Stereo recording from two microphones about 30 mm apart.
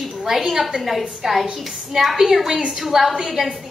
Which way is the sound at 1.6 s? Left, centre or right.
Centre.